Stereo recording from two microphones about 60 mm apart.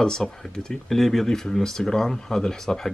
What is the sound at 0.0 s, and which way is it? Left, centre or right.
Speech, centre.